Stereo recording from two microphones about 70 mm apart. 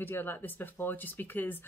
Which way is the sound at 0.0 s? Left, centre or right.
Left.